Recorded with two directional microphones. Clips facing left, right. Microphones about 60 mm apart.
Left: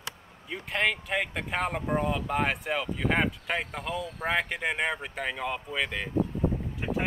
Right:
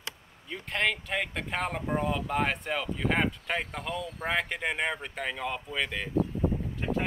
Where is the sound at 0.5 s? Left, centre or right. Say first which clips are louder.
Left 1 dB; centre.